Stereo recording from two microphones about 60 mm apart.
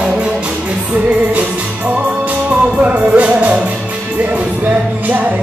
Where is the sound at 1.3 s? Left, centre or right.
Right.